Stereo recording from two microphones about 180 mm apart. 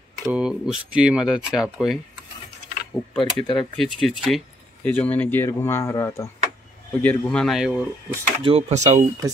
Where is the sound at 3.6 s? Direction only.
Centre (ahead or behind).